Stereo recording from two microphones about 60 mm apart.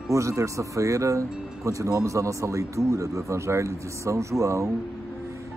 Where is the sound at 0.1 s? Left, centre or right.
Right.